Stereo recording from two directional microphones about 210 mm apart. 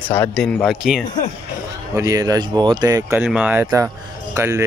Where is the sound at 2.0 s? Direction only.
15° right (ahead or behind).